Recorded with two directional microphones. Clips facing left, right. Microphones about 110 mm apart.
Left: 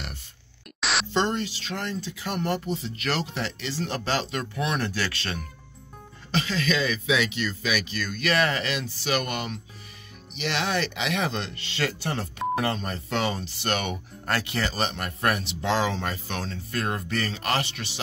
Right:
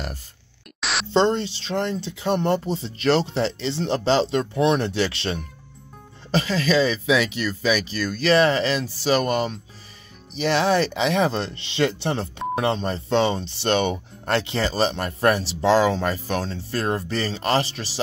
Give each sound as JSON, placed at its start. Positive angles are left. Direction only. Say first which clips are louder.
{"t": 0.7, "sound": "static", "louder": "even", "side_deg": 0}
{"t": 1.1, "sound": "speech", "louder": "right 9 dB", "side_deg": -30}
{"t": 6.3, "sound": "speech", "louder": "right 6 dB", "side_deg": -35}
{"t": 11.6, "sound": "speech", "louder": "right 8 dB", "side_deg": -25}